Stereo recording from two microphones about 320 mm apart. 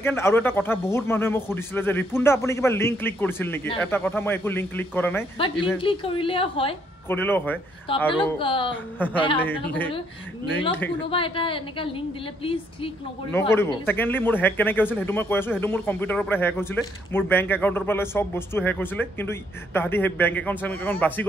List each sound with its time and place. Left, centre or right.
0.0 s speech: centre
5.8 s speech: centre
7.2 s a woman's voice: centre
8.9 s a woman's voice: centre
11.1 s speech: centre